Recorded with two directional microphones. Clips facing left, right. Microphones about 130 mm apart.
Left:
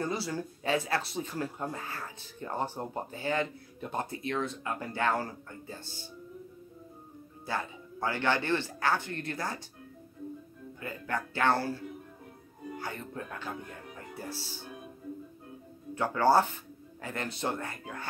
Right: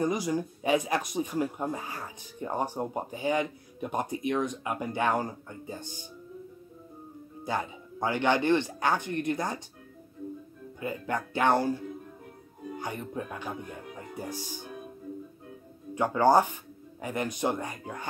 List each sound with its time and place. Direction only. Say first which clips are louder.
0.0 s speech: right 5 dB; 15° right (ahead or behind)
7.4 s speech: right 3 dB; 15° right (ahead or behind)
10.8 s speech: right 3 dB; 20° right (ahead or behind)
15.9 s speech: right 3 dB; 15° right (ahead or behind)